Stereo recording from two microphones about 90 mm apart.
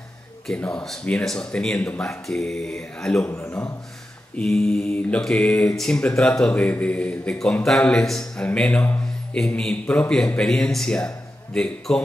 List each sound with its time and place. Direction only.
0.7 s a man's voice: 10° left (ahead or behind)
3.3 s a man's voice: 25° left (ahead or behind)
4.4 s a man's voice: 10° left (ahead or behind)
8.5 s a sound: 15° left (ahead or behind)
9.8 s a man's voice: 15° left (ahead or behind)